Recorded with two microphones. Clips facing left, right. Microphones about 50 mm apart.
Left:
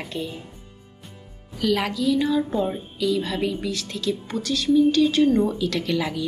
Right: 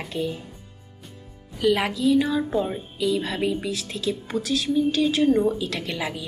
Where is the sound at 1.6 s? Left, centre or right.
Centre.